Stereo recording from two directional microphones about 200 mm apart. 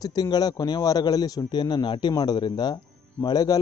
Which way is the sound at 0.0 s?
20° left (ahead or behind).